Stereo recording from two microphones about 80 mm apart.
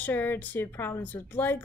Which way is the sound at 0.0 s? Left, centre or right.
Left.